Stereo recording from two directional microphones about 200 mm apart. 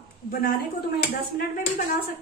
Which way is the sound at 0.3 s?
50° left (ahead or behind).